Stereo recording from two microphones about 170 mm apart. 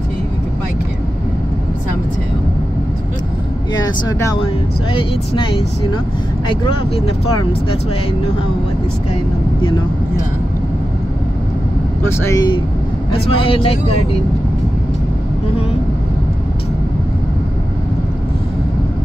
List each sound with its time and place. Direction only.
3.7 s speech: 20° left (ahead or behind)
12.0 s speech: 15° left (ahead or behind)
13.1 s speech: 30° left (ahead or behind)